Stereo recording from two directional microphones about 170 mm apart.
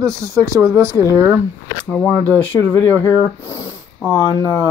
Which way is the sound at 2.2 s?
10° left (ahead or behind).